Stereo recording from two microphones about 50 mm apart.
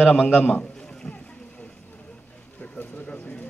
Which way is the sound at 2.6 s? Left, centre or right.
Left.